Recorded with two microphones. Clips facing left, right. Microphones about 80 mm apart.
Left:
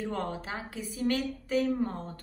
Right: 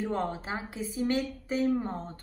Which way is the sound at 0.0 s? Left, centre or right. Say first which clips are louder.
Right 2 dB; right.